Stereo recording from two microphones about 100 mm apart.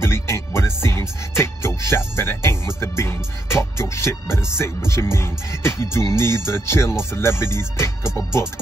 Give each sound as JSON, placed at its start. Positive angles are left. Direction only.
{"t": 0.0, "sound": "music", "side_deg": 25}
{"t": 6.4, "sound": "speech", "side_deg": 25}